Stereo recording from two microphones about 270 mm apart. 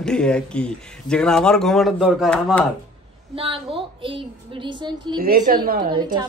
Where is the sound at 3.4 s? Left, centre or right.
Right.